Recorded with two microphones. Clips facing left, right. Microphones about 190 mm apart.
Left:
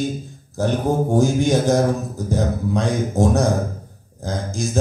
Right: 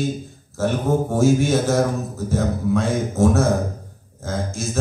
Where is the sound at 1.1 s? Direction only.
15° left (ahead or behind).